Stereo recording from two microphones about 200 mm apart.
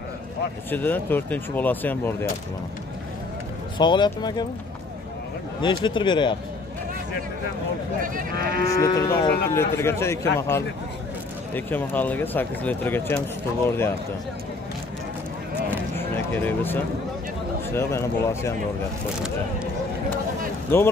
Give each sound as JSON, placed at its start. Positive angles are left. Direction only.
{"t": 0.7, "sound": "speech", "side_deg": 10}
{"t": 3.7, "sound": "speech", "side_deg": 20}
{"t": 5.6, "sound": "speech", "side_deg": 25}
{"t": 8.0, "sound": "speech", "side_deg": -45}
{"t": 8.6, "sound": "speech", "side_deg": 15}
{"t": 11.5, "sound": "speech", "side_deg": 10}
{"t": 16.0, "sound": "speech", "side_deg": 10}
{"t": 20.7, "sound": "speech", "side_deg": 10}